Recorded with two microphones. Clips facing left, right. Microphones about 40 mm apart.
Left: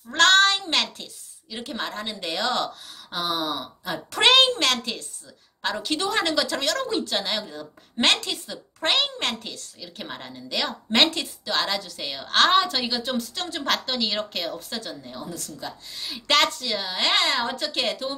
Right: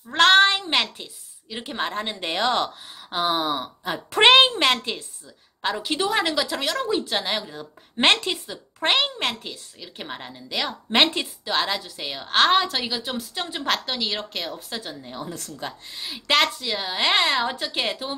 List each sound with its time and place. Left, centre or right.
0.1 s a sound: centre
1.5 s a woman's voice: right
14.9 s a woman's voice: right
15.2 s a woman's voice: right
16.0 s a woman's voice: centre